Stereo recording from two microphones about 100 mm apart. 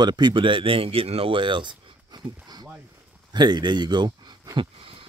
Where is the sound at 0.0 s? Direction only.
45° right (ahead or behind).